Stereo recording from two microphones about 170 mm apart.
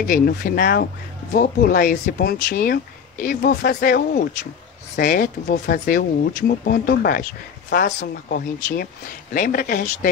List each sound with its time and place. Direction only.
0.0 s speech: 60° left (ahead or behind)